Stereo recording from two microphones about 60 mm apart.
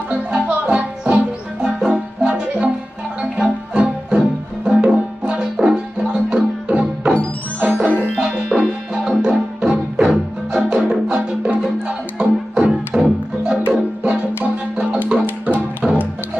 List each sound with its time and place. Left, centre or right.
0.1 s music: centre
8.2 s music: centre